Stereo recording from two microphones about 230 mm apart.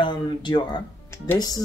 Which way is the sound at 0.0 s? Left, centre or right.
Centre.